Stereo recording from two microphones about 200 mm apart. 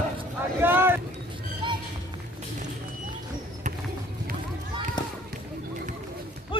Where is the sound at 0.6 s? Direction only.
10° right (ahead or behind).